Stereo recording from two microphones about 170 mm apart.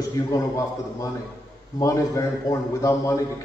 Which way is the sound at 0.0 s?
20° left (ahead or behind).